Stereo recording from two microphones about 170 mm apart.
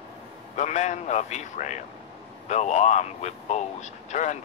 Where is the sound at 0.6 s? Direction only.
45° left (ahead or behind).